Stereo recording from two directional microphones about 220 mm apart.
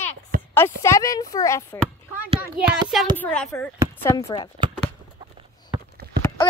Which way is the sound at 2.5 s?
5° right (ahead or behind).